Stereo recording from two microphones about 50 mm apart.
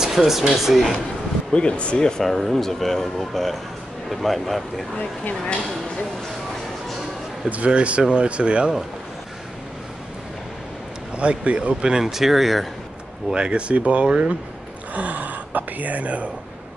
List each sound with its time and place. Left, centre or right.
0.0 s speech: centre
1.5 s speech: centre
2.2 s speech: centre
7.4 s speech: right
11.1 s speech: right
11.8 s speech: centre
13.3 s speech: centre